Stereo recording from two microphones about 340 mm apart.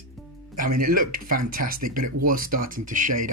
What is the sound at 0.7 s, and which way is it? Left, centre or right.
Speech, right.